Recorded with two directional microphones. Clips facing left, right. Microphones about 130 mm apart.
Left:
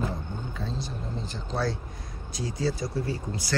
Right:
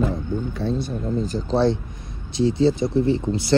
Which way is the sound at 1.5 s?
25° right (ahead or behind).